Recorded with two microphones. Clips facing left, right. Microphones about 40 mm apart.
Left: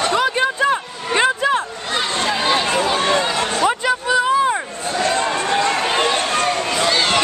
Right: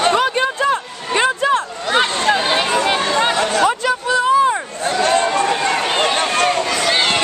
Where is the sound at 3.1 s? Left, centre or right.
Right.